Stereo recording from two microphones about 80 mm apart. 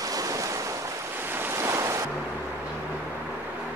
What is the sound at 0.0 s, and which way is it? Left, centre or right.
Waves, right.